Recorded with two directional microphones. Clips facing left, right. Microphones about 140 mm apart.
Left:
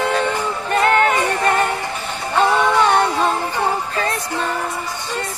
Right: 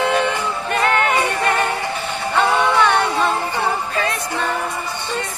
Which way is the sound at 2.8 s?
35° left (ahead or behind).